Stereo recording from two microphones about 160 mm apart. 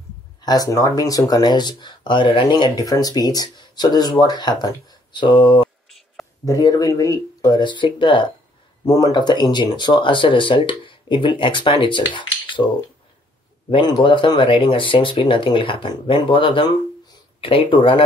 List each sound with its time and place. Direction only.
0.4 s speech: 25° left (ahead or behind)
5.9 s a sound: centre (ahead or behind)
6.4 s speech: 20° left (ahead or behind)
13.7 s speech: 25° left (ahead or behind)